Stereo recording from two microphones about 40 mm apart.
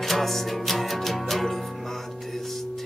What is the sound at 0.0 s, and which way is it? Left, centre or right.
Music, centre.